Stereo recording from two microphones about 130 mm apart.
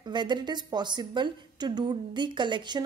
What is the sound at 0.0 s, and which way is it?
Speech, 35° right (ahead or behind).